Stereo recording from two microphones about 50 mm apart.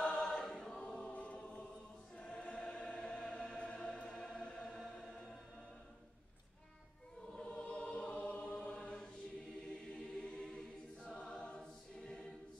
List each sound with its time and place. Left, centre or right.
0.0 s choir: centre
7.3 s choir: left